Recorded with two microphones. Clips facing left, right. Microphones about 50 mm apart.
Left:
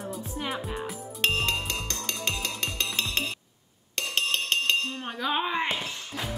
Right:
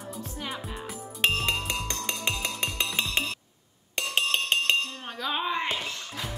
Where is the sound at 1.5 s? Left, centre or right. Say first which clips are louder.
Right 1 dB; centre.